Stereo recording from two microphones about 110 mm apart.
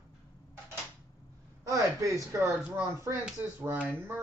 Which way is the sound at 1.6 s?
30° right (ahead or behind).